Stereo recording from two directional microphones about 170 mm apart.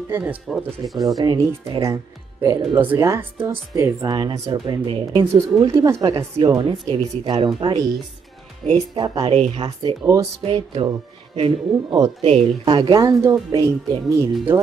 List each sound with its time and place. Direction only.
0.1 s speech: 5° right (ahead or behind)
1.1 s speech: 25° right (ahead or behind)
6.1 s speech: 30° right (ahead or behind)
8.9 s speech: 25° right (ahead or behind)
11.7 s speech: centre (ahead or behind)
12.2 s speech: 35° right (ahead or behind); by 14.6 s 15° right (ahead or behind)